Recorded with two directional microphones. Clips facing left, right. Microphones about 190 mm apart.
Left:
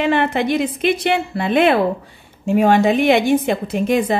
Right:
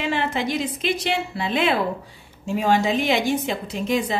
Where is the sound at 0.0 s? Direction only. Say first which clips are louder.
Left 7 dB; 60° left (ahead or behind).